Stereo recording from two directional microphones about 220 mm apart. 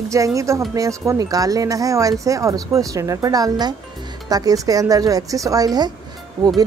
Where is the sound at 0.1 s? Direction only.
15° right (ahead or behind).